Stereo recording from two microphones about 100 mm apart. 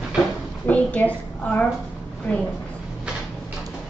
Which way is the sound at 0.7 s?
15° left (ahead or behind).